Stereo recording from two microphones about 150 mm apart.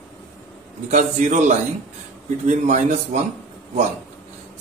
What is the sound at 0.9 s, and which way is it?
A man's voice, 50° right (ahead or behind).